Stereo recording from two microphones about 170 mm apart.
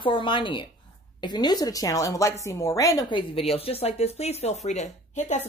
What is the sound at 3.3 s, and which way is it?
Speech, 35° left (ahead or behind).